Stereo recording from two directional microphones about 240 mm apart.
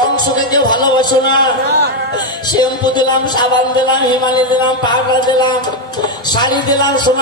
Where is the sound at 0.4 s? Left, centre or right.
Centre.